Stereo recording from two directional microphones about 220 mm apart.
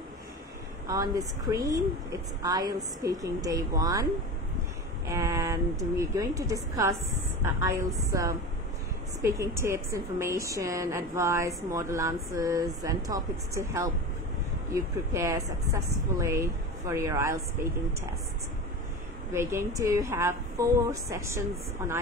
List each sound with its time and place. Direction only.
0.8 s a woman's voice: 15° right (ahead or behind)
19.3 s a woman's voice: 10° right (ahead or behind)